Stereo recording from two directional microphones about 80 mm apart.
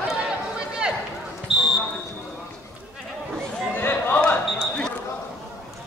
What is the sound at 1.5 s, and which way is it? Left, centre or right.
Basketball bounce, centre.